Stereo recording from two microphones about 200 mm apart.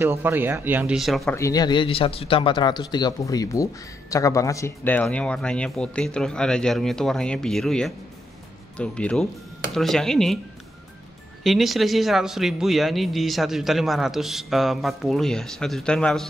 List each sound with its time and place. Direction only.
0.0 s speech: 10° right (ahead or behind)
1.3 s a man's voice: 15° left (ahead or behind)
11.4 s a man's voice: centre (ahead or behind)